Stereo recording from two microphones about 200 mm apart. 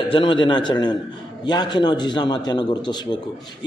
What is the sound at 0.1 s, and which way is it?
A man's voice, 25° left (ahead or behind).